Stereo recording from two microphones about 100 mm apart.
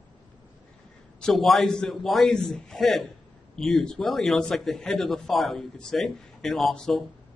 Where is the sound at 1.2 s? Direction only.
Centre (ahead or behind).